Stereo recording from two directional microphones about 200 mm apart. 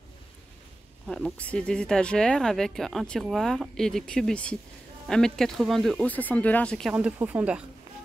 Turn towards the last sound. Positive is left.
turn(degrees=-5)  # may be behind; listen again after turning